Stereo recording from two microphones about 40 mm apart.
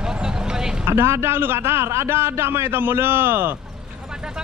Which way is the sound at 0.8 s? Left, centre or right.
Right.